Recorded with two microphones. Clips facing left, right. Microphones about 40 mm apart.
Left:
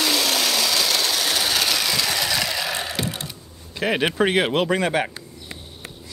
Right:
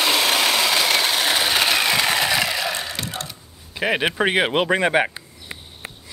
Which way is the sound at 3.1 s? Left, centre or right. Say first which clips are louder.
Right 2 dB; centre.